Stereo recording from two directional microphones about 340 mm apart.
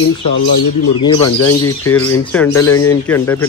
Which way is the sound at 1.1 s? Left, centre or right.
Left.